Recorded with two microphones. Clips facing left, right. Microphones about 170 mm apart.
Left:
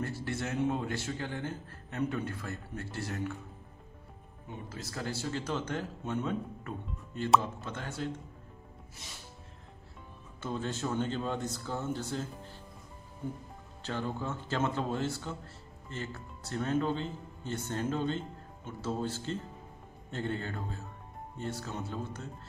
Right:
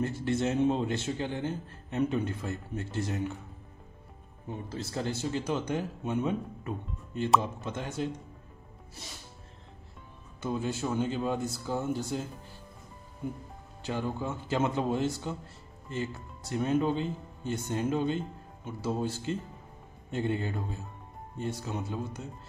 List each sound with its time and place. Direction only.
0.0 s speech: 20° right (ahead or behind)
4.6 s a man's voice: 25° right (ahead or behind)
10.4 s a man's voice: 10° right (ahead or behind)